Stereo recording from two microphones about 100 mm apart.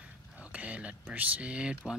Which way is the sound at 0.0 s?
15° right (ahead or behind).